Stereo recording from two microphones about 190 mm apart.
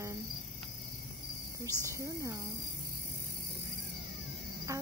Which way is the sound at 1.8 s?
15° right (ahead or behind).